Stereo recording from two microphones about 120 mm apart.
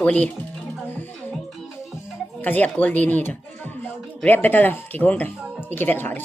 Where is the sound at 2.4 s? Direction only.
15° left (ahead or behind).